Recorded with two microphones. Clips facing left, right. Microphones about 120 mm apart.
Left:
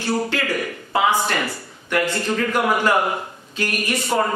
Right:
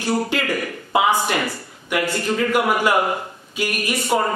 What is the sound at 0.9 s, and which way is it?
Speech, 15° right (ahead or behind).